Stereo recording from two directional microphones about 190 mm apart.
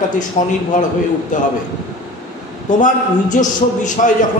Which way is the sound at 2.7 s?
40° left (ahead or behind).